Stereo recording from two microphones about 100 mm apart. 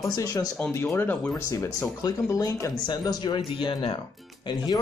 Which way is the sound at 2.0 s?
40° left (ahead or behind).